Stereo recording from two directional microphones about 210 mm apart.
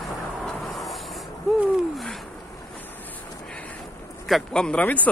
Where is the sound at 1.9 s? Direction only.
Centre (ahead or behind).